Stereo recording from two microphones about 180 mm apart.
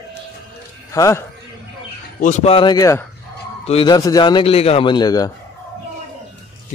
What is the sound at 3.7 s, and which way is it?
Speech, 30° left (ahead or behind).